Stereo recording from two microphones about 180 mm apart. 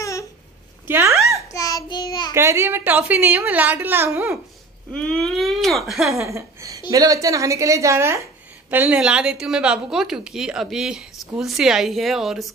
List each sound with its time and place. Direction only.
0.8 s a sound: 15° right (ahead or behind)
1.5 s child singing: 20° left (ahead or behind)
2.3 s a woman's voice: 15° right (ahead or behind)
4.9 s a woman's voice: 5° left (ahead or behind)
6.1 s a woman's voice: 15° right (ahead or behind)